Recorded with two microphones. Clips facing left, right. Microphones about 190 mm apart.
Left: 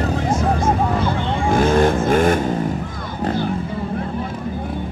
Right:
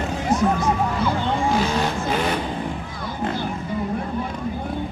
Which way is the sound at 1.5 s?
50° left (ahead or behind).